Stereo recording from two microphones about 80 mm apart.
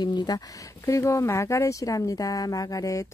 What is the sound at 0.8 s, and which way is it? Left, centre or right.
Speech, left.